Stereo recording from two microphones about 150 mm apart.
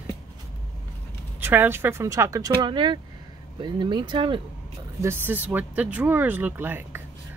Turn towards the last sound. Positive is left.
turn(degrees=-15)  # may be behind; listen again after turning